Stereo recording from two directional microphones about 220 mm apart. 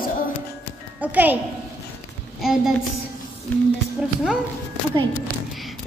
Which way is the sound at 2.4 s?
Centre (ahead or behind).